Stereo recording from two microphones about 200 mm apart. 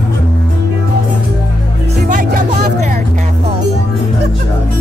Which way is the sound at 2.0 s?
40° right (ahead or behind).